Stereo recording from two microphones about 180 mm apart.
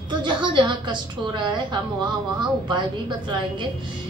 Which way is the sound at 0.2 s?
25° right (ahead or behind).